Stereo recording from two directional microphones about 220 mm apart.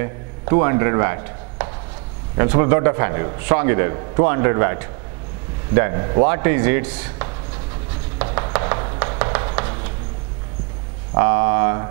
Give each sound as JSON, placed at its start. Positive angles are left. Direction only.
{"t": 0.0, "sound": "a man's voice", "side_deg": -15}
{"t": 8.5, "sound": "a sound", "side_deg": -20}
{"t": 11.1, "sound": "a man's voice", "side_deg": -15}